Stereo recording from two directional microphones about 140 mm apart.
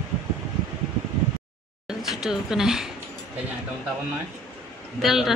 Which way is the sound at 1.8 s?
5° right (ahead or behind).